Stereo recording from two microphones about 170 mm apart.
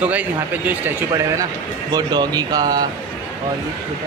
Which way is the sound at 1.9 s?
25° right (ahead or behind).